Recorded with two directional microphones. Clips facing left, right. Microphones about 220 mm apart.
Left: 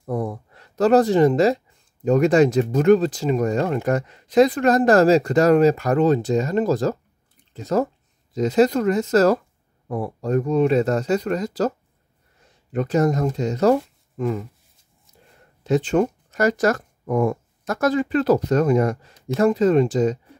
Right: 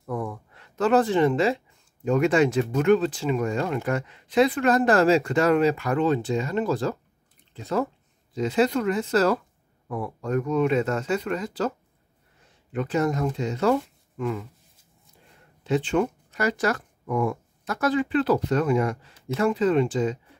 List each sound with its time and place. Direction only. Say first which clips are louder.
0.0 s a sound: left 5 dB; 35° left (ahead or behind)
2.0 s speech: left 5 dB; 40° left (ahead or behind)
12.7 s speech: left 5 dB; 40° left (ahead or behind)
15.6 s speech: left 4 dB; 45° left (ahead or behind)